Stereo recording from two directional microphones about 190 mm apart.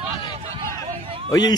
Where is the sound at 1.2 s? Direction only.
20° left (ahead or behind).